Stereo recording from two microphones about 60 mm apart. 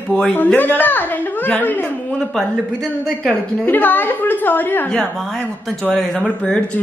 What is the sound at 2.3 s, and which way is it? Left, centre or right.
Speech, centre.